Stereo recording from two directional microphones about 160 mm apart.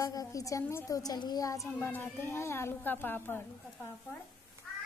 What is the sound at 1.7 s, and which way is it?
A woman's voice, 15° left (ahead or behind).